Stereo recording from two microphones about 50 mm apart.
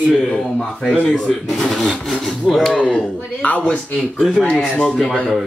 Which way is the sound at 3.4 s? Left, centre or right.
Left.